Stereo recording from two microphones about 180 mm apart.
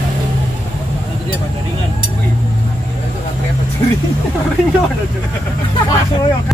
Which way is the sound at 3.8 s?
30° left (ahead or behind).